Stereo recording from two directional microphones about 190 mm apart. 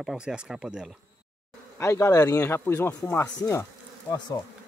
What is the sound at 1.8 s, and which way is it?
Speech, 15° left (ahead or behind).